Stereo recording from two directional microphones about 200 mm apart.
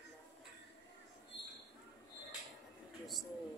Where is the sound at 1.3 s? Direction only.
60° left (ahead or behind).